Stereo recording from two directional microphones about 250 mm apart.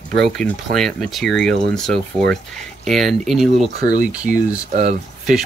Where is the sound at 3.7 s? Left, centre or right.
Right.